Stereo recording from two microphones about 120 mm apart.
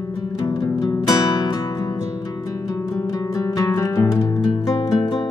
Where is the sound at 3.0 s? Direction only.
30° left (ahead or behind).